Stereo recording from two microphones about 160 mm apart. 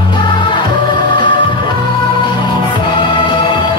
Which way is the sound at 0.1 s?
30° left (ahead or behind).